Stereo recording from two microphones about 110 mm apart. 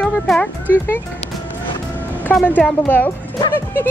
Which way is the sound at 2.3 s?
15° left (ahead or behind).